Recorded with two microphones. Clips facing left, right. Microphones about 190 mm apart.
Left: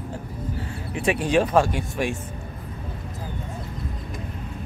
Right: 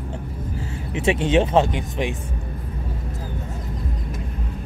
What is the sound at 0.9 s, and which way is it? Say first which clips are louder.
Speech: right 2 dB; 25° right (ahead or behind).